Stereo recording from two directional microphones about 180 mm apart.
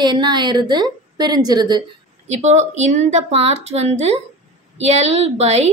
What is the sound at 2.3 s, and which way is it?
A woman's voice, 40° right (ahead or behind).